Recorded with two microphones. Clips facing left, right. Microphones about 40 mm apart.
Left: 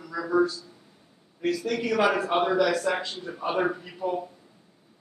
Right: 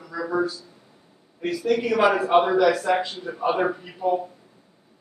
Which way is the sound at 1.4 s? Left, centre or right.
Centre.